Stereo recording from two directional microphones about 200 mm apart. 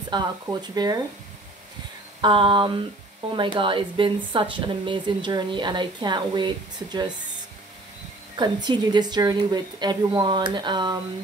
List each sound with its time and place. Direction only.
0.1 s speech: 20° right (ahead or behind)
2.2 s speech: 25° right (ahead or behind)
8.6 s speech: 20° right (ahead or behind)